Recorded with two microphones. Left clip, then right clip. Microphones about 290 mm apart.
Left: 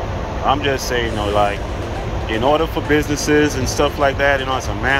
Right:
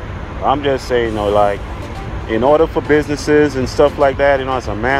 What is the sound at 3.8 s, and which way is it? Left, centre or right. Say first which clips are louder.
Speech: right 4 dB; right.